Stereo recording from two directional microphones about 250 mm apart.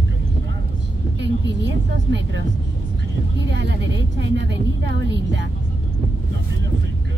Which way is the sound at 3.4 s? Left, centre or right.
Right.